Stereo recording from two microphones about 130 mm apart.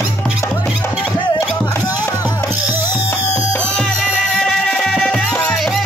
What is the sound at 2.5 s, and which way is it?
Music, 15° right (ahead or behind).